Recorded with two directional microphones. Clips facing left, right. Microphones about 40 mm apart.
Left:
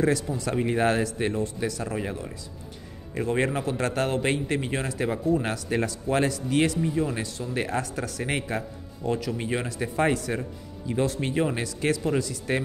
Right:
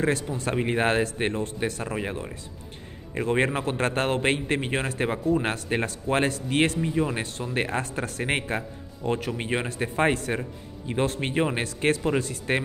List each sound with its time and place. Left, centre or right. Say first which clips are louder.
0.0 s a man's voice: left 1 dB; right
6.8 s speech: right 1 dB; right
7.2 s a man's voice: right 1 dB; right